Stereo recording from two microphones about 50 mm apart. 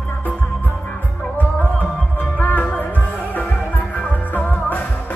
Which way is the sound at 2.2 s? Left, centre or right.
Left.